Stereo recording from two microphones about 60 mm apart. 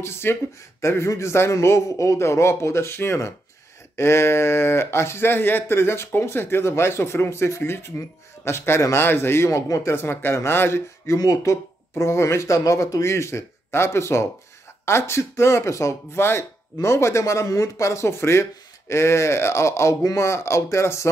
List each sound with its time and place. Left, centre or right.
0.0 s speech: left
9.5 s speech: left
9.9 s speech: left
11.1 s speech: left
11.9 s speech: left